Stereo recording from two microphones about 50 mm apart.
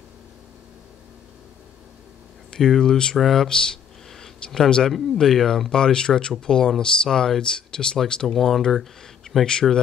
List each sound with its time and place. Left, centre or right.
2.5 s speech: centre
3.2 s speech: centre
3.4 s a sound: centre
4.6 s speech: centre
8.3 s speech: centre
9.5 s speech: centre